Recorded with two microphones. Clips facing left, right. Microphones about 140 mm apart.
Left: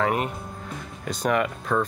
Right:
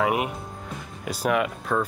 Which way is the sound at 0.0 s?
10° right (ahead or behind).